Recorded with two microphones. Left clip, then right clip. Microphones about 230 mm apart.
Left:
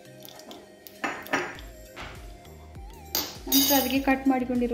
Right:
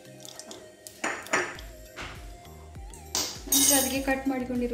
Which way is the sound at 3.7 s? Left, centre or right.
Left.